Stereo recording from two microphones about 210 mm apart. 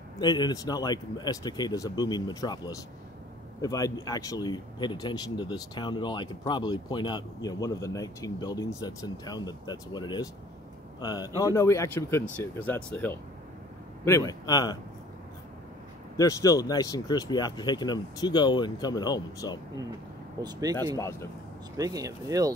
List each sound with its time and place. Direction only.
0.2 s speech: 20° left (ahead or behind)
16.2 s speech: 15° left (ahead or behind)
20.7 s speech: 20° right (ahead or behind)